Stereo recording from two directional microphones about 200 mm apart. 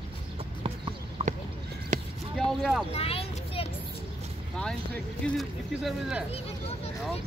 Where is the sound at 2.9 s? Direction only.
30° left (ahead or behind).